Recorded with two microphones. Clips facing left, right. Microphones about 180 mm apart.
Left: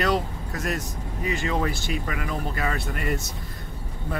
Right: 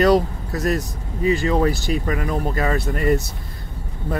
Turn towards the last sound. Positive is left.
turn(degrees=-40)  # may be behind; listen again after turning